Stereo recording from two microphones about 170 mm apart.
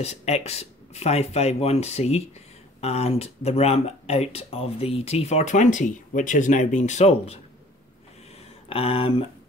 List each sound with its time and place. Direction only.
0.0 s speech: 40° left (ahead or behind)
8.6 s speech: 35° left (ahead or behind)